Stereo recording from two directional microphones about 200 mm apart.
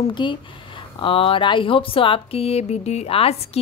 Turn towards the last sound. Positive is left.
turn(degrees=30)  # may be behind; listen again after turning